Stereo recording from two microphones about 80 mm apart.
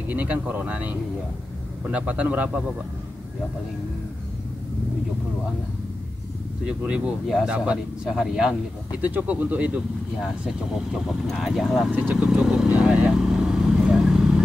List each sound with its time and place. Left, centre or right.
0.1 s a man's voice: centre
7.4 s a man's voice: centre
9.0 s speech: centre
10.2 s a man's voice: centre
13.2 s vehicle: centre